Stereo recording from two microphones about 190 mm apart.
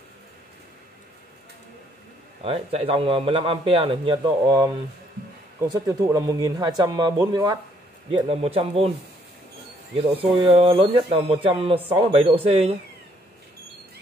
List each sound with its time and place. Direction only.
2.4 s a man's voice: 30° right (ahead or behind)
5.7 s a man's voice: 15° right (ahead or behind)
8.1 s speech: 30° right (ahead or behind)
10.1 s a man's voice: 30° right (ahead or behind)